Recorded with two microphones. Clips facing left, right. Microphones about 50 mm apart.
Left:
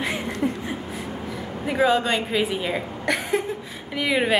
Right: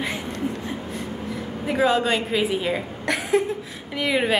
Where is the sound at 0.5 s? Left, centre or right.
Left.